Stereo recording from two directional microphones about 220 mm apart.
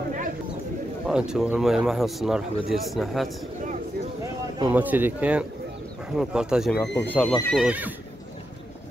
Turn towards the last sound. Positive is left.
turn(degrees=-5)  # may be behind; listen again after turning